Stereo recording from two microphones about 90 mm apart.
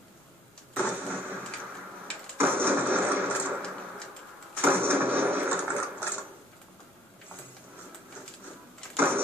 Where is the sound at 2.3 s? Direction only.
25° right (ahead or behind).